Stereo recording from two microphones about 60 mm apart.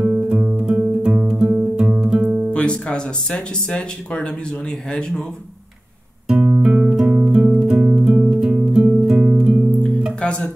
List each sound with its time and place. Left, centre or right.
0.0 s guitar: right
1.5 s music: right
2.0 s guitar: centre
2.2 s guitar: right
2.5 s speech: centre
6.2 s music: centre
10.2 s music: centre